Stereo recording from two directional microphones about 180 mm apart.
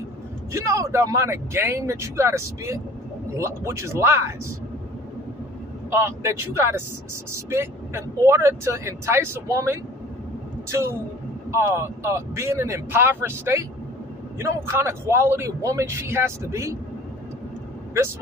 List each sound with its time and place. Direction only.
0.5 s speech: 15° right (ahead or behind)
5.9 s speech: 15° right (ahead or behind)